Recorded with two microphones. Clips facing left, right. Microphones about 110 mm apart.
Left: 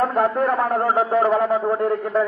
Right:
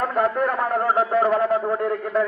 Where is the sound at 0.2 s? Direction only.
25° left (ahead or behind).